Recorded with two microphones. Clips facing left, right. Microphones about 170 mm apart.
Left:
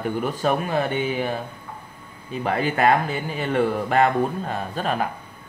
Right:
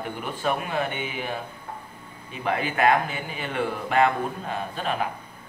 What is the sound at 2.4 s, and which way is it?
Speech, 35° left (ahead or behind).